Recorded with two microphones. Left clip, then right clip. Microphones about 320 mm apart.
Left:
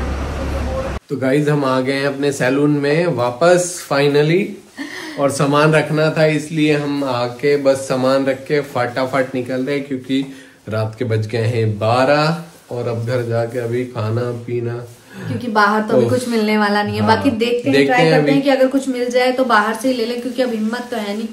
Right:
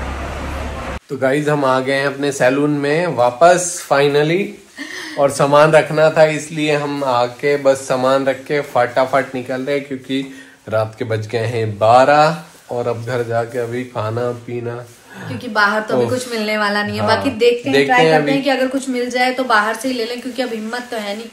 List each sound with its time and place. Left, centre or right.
1.2 s speech: centre
15.5 s a woman's voice: centre
18.4 s a woman's voice: centre